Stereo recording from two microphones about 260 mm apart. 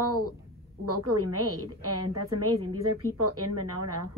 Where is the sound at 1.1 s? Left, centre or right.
Right.